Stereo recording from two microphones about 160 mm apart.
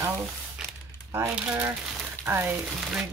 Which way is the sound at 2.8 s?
Centre (ahead or behind).